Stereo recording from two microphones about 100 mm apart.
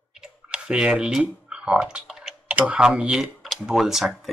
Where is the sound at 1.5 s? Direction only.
10° right (ahead or behind).